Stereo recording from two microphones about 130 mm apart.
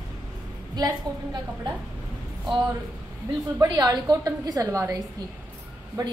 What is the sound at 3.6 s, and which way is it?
A woman's voice, 25° right (ahead or behind).